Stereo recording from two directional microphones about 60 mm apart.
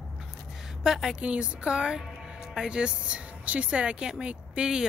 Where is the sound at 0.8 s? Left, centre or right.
Centre.